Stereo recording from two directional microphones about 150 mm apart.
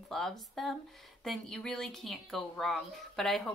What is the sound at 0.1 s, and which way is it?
A woman's voice, centre (ahead or behind).